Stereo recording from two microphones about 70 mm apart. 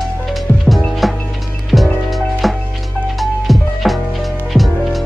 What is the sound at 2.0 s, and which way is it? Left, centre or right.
Music, centre.